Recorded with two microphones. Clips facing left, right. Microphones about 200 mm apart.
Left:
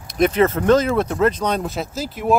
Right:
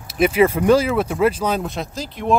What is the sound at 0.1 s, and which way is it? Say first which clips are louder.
Speech: right 1 dB; 5° right (ahead or behind).